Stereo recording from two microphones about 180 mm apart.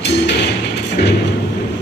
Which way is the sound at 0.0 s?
65° left (ahead or behind).